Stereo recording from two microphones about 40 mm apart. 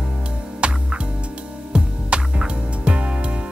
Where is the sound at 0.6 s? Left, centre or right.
Right.